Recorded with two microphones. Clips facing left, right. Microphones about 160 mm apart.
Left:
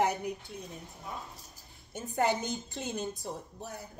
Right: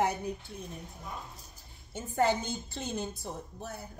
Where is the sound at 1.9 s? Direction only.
15° left (ahead or behind).